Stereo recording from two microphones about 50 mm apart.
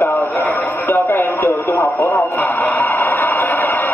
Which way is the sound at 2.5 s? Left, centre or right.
Left.